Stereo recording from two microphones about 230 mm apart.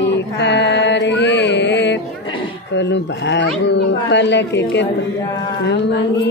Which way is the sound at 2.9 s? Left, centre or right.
Left.